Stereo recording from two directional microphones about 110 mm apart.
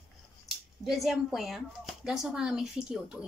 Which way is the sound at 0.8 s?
Centre (ahead or behind).